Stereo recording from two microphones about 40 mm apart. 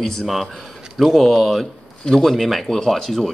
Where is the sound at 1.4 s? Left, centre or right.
Centre.